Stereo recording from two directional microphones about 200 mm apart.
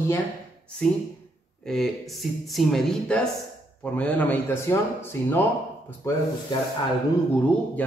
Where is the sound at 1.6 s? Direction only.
Centre (ahead or behind).